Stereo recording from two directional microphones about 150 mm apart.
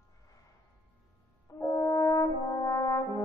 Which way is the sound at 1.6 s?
20° left (ahead or behind).